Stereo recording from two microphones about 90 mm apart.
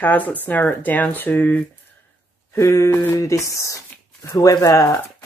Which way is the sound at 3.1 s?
40° left (ahead or behind).